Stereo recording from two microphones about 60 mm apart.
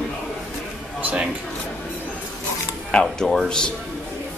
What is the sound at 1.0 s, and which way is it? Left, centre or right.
Speech, right.